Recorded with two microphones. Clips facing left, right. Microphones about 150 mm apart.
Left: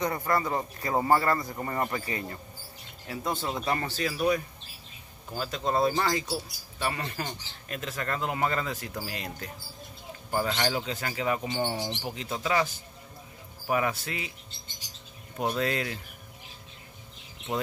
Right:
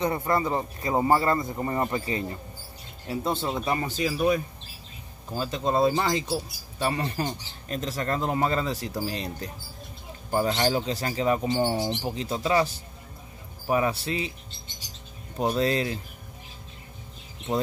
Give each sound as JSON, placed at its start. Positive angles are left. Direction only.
{"t": 0.0, "sound": "speech", "side_deg": -25}
{"t": 6.8, "sound": "speech", "side_deg": -30}
{"t": 15.4, "sound": "speech", "side_deg": -25}